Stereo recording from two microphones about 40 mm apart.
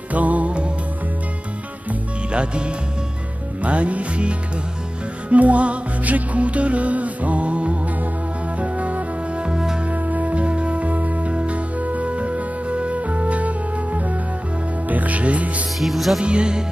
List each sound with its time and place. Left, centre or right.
0.1 s music: right
2.3 s speech: right
3.6 s music: right
9.8 s music: right
15.8 s music: centre
16.2 s music: right